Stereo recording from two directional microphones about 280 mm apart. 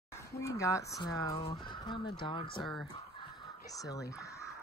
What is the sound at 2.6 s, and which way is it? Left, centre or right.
Speech, centre.